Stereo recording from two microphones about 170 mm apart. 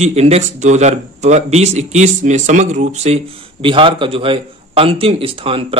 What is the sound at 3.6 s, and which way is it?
A man's voice, 30° right (ahead or behind).